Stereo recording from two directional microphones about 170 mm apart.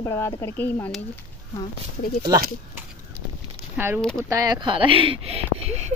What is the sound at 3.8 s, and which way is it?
Speech, 10° right (ahead or behind).